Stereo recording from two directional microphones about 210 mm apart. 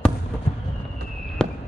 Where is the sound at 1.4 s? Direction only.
5° left (ahead or behind).